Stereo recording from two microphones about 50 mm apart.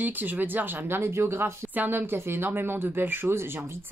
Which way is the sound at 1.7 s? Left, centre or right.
Right.